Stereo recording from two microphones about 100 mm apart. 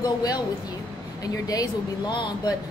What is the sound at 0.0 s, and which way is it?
A woman's voice, 40° left (ahead or behind).